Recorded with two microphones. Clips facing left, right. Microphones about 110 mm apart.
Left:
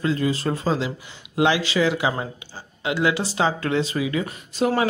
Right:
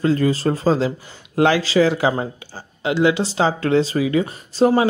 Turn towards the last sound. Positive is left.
turn(degrees=-30)  # may be behind; listen again after turning